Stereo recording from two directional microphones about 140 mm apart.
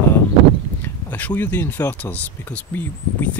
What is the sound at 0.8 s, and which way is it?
Speech, 10° left (ahead or behind).